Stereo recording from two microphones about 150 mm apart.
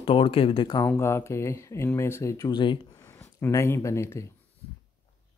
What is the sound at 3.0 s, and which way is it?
Speech, 20° left (ahead or behind).